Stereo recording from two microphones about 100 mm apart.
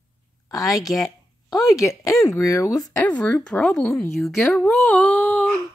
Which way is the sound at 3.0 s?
15° left (ahead or behind).